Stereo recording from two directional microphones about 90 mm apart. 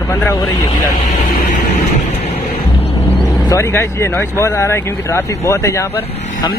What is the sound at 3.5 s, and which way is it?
Speech, 30° left (ahead or behind).